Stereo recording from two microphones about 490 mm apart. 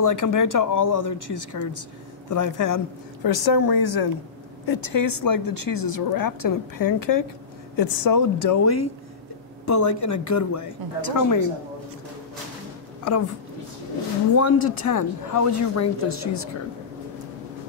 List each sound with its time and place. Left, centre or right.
0.0 s speech: left
14.4 s speech: left